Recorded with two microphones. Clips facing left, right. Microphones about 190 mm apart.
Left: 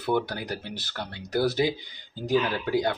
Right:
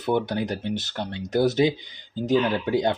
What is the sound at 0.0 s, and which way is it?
Speech, 20° right (ahead or behind).